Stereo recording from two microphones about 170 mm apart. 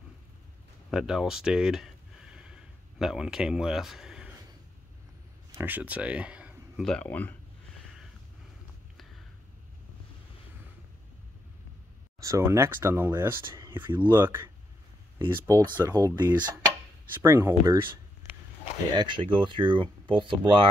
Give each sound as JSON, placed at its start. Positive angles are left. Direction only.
{"t": 0.8, "sound": "a sound", "side_deg": -5}
{"t": 5.5, "sound": "speech", "side_deg": -10}
{"t": 6.8, "sound": "speech", "side_deg": 5}
{"t": 12.2, "sound": "speech", "side_deg": -20}
{"t": 18.9, "sound": "speech", "side_deg": -30}